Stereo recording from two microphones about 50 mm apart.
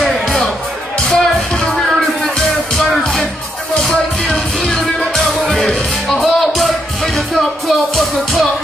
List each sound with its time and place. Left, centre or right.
0.0 s music: centre
1.9 s music: centre
4.6 s music: centre